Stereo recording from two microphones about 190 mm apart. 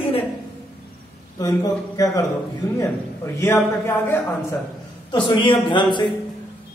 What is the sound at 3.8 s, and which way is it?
Speech, 10° left (ahead or behind).